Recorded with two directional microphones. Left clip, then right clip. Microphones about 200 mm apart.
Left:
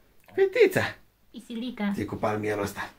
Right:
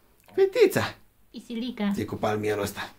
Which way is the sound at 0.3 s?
10° right (ahead or behind).